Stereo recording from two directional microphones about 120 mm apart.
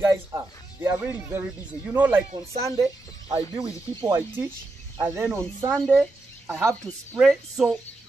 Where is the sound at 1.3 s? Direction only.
10° right (ahead or behind).